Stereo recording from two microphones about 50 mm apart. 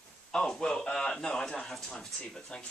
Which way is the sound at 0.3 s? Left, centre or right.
Centre.